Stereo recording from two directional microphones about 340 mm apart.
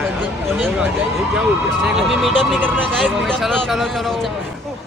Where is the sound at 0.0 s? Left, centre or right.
Centre.